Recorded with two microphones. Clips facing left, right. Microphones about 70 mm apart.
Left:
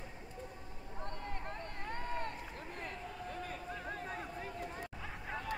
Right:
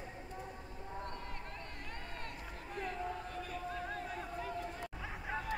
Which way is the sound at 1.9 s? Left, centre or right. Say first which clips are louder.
Left 9 dB; left.